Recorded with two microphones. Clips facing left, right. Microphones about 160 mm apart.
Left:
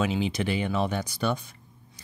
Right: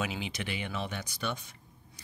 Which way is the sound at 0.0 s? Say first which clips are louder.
Left 9 dB; 30° left (ahead or behind).